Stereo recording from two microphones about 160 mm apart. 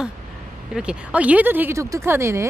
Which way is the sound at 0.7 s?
5° right (ahead or behind).